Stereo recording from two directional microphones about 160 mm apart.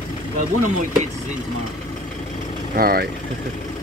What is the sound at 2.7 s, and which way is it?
Speech, 70° right (ahead or behind).